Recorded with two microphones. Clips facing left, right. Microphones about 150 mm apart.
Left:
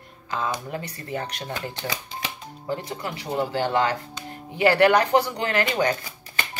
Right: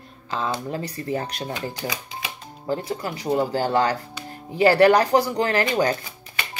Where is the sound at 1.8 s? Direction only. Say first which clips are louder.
Right 1 dB; 10° right (ahead or behind).